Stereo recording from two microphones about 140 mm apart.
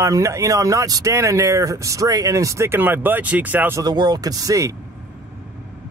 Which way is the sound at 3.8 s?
30° right (ahead or behind).